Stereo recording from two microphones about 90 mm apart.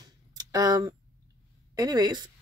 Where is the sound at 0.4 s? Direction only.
45° right (ahead or behind).